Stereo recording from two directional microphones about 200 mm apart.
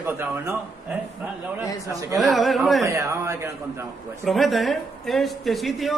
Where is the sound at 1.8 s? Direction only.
15° right (ahead or behind).